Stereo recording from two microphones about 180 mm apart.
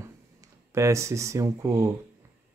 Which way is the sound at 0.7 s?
15° right (ahead or behind).